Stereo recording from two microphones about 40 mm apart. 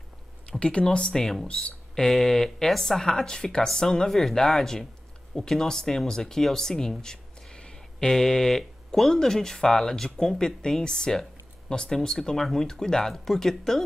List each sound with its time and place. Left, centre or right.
0.5 s speech: left; by 13.8 s centre